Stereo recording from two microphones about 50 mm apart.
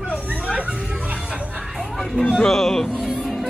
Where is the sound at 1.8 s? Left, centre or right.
Centre.